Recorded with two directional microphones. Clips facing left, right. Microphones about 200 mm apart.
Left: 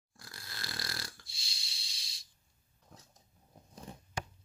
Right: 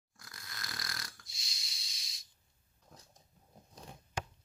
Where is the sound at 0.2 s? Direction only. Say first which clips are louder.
Left 2 dB; 30° left (ahead or behind).